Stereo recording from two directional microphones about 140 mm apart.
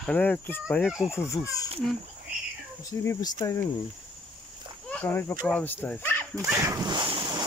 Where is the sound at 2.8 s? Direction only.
20° left (ahead or behind).